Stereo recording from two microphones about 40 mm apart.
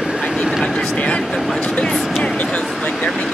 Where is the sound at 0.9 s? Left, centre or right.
Left.